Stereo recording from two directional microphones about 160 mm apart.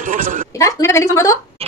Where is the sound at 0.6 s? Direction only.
20° left (ahead or behind).